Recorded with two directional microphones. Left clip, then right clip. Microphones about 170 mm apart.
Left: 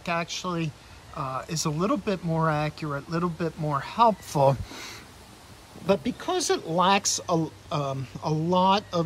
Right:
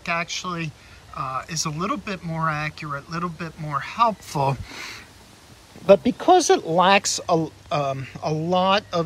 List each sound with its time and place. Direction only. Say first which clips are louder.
0.0 s speech: right 3 dB; 20° left (ahead or behind)
5.9 s speech: right 11 dB; centre (ahead or behind)
6.7 s speech: right 2 dB; 10° left (ahead or behind)